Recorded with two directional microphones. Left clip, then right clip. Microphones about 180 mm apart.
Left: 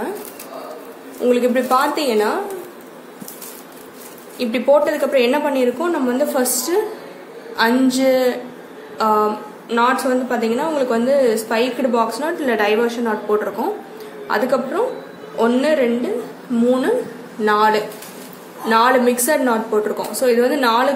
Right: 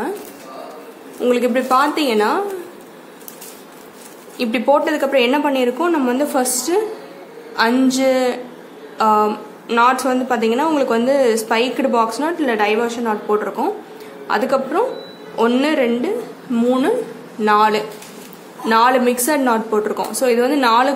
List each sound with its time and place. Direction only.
1.2 s a woman's voice: 25° right (ahead or behind)
4.4 s a woman's voice: 25° right (ahead or behind)